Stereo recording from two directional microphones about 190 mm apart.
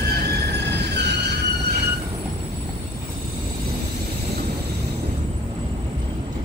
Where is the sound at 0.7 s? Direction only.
60° right (ahead or behind).